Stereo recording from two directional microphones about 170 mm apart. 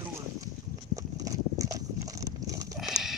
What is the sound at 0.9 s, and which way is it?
Horse, 20° right (ahead or behind).